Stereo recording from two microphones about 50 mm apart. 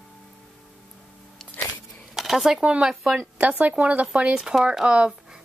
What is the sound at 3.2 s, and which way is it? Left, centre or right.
Speech, right.